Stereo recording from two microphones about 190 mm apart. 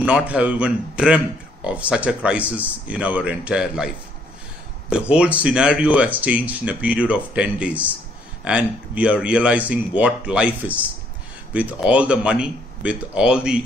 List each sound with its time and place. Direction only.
0.0 s speech: 5° right (ahead or behind)